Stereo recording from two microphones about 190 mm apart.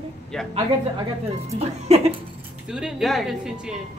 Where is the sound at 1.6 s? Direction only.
35° right (ahead or behind).